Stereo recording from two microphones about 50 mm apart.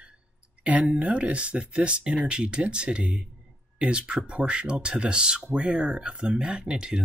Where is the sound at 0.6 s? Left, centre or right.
Right.